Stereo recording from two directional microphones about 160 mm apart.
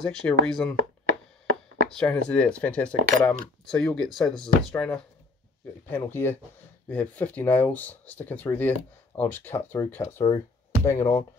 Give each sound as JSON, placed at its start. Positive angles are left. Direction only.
{"t": 0.0, "sound": "speech", "side_deg": 5}
{"t": 1.9, "sound": "speech", "side_deg": 5}
{"t": 10.2, "sound": "speech", "side_deg": 25}